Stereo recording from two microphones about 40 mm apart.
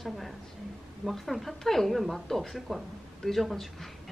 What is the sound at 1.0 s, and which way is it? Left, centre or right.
A woman's voice, centre.